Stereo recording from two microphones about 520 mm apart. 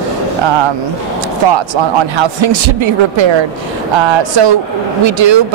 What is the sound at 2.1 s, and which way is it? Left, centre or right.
Speech, right.